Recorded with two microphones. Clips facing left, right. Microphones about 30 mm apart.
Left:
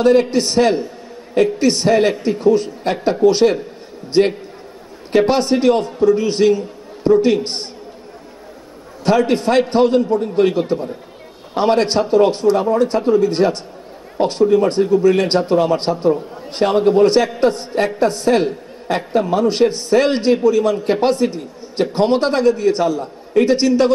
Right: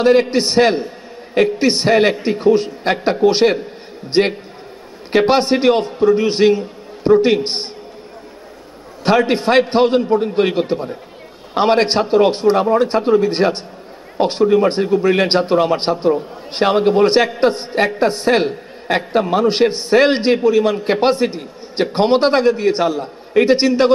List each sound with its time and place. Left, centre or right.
0.0 s a man's voice: right
9.0 s a man's voice: right